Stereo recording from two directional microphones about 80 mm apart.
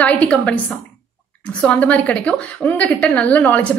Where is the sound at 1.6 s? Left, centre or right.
Centre.